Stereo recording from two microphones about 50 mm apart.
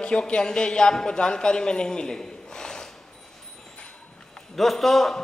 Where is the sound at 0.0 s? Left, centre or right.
Centre.